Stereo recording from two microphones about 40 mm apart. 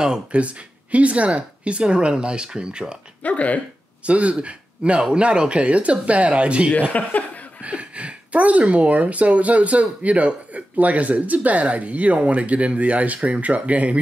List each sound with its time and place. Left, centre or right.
0.0 s speech: right
0.9 s speech: right
3.3 s speech: left
4.0 s speech: right
6.9 s speech: left
7.6 s speech: right